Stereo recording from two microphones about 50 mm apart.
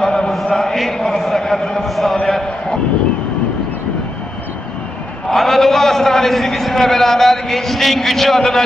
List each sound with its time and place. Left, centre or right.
0.0 s chant: centre
2.2 s a sound: centre
5.3 s a man's voice: centre